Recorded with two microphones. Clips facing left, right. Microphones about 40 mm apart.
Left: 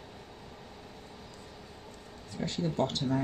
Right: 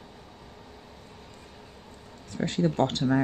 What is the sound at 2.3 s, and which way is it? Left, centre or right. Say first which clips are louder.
Speech: right 7 dB; right.